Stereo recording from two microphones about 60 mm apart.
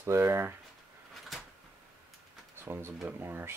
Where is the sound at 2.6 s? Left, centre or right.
Right.